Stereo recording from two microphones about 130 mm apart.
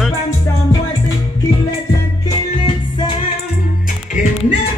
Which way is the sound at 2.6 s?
40° left (ahead or behind).